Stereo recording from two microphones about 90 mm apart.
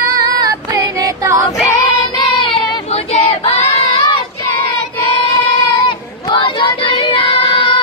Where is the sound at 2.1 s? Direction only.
60° left (ahead or behind); by 4.0 s 90° left.